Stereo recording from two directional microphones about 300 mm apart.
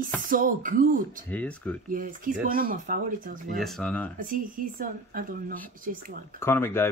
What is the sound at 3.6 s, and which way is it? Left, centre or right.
Speech, centre.